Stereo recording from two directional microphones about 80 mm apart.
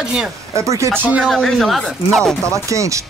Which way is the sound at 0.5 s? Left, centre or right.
Right.